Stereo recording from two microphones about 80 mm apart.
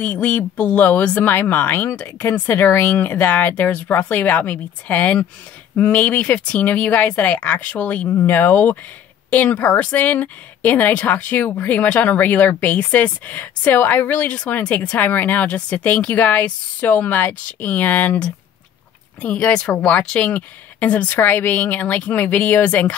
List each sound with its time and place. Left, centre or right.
0.0 s speech: centre